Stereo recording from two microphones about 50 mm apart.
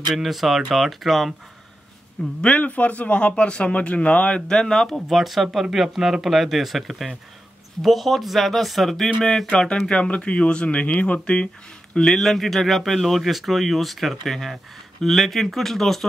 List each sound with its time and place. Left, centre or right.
0.1 s speech: centre
2.4 s a man's voice: left
4.5 s speech: centre
4.9 s speech: centre
9.5 s a man's voice: centre
11.9 s speech: centre